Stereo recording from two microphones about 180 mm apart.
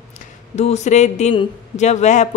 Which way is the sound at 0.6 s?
40° left (ahead or behind).